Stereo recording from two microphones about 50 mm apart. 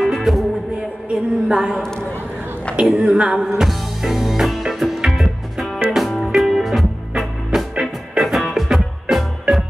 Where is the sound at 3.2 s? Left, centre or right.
Centre.